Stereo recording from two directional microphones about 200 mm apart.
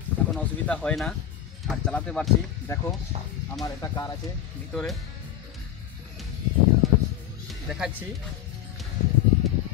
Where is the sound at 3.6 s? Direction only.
15° left (ahead or behind).